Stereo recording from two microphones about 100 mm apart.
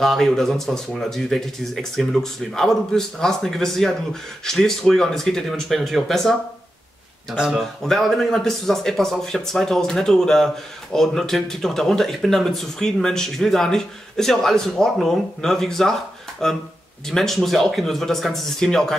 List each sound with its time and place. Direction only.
0.0 s speech: 5° left (ahead or behind)
7.3 s speech: 5° right (ahead or behind)
7.8 s speech: 5° left (ahead or behind)